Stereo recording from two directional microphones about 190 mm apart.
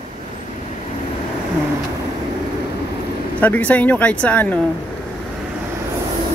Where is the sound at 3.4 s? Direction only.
10° left (ahead or behind).